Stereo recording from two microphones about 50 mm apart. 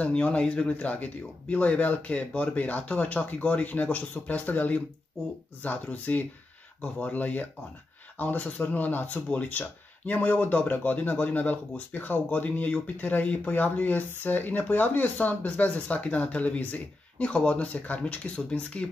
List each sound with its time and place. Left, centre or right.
0.0 s speech: left